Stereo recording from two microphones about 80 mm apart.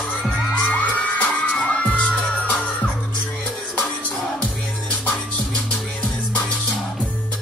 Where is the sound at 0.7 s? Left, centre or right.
Centre.